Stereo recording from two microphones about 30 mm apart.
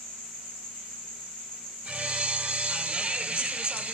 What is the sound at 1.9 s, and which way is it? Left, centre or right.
Music, right.